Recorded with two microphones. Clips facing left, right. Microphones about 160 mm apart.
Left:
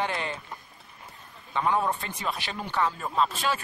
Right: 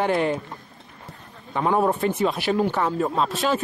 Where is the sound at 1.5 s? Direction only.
10° right (ahead or behind).